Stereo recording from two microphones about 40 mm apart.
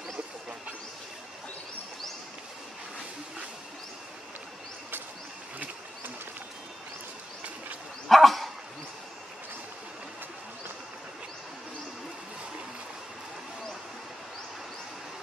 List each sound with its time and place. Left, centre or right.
8.1 s dog: centre